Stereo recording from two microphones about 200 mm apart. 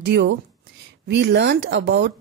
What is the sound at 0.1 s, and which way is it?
Speech, 60° right (ahead or behind).